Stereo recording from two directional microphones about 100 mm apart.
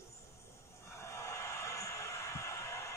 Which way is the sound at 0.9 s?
30° left (ahead or behind).